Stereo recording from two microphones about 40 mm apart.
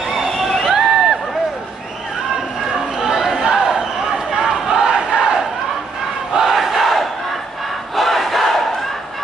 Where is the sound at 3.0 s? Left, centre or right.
Centre.